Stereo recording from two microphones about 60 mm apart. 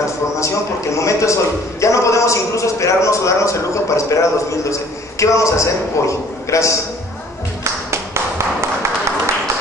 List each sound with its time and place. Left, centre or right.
0.9 s a man's voice: left
7.6 s clapping: right